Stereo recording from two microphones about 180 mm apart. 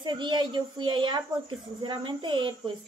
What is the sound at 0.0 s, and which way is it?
Speech, 25° right (ahead or behind).